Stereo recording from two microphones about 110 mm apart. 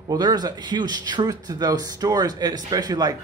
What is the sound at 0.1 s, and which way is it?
Speech, 40° right (ahead or behind).